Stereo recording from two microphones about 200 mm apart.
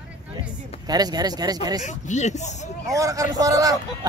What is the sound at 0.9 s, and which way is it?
Speech, 20° right (ahead or behind).